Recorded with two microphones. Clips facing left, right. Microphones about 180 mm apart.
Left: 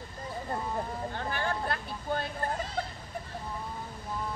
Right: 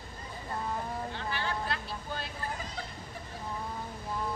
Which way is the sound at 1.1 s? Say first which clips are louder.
Left 2 dB; 50° left (ahead or behind).